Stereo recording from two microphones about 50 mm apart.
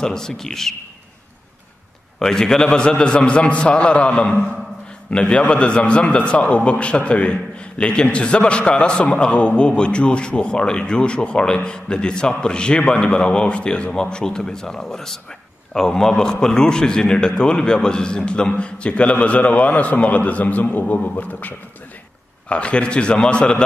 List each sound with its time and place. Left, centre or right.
0.0 s a man's voice: centre
2.1 s a man's voice: centre; by 21.5 s left
22.5 s a man's voice: left